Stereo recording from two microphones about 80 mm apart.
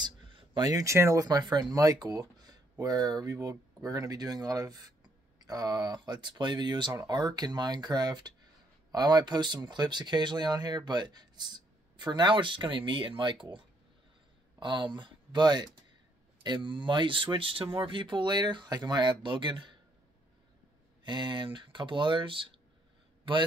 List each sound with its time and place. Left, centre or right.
0.0 s a sound: right
0.6 s speech: right
0.9 s speech: right
1.2 s speech: right
14.6 s speech: right
16.4 s speech: right
21.0 s speech: right